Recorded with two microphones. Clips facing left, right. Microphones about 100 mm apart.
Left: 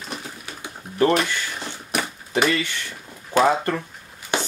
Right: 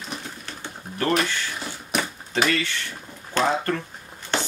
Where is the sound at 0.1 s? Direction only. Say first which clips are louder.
Left 2 dB; 10° left (ahead or behind).